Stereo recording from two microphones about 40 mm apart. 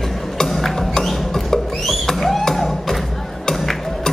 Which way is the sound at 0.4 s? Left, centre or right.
Centre.